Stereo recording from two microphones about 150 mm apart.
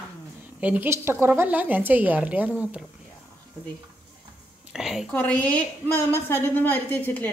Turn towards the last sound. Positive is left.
turn(degrees=10)  # may be behind; listen again after turning